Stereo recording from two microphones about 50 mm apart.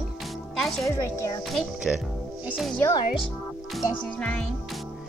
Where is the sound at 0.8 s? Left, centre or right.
Left.